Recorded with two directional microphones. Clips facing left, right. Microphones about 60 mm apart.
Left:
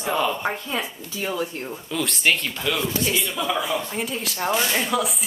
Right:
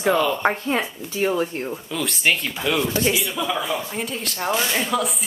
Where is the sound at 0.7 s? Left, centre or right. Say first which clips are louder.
Right 5 dB; right.